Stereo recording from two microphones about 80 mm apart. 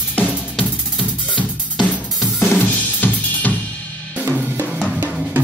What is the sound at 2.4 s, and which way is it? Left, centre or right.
Drum kit, left.